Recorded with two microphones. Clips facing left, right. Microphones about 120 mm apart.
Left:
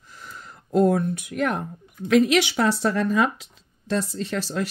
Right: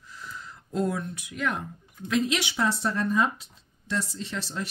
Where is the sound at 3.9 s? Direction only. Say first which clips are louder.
Left 6 dB; 55° left (ahead or behind).